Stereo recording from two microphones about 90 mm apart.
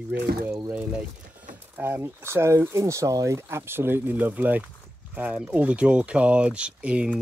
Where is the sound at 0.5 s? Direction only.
20° right (ahead or behind).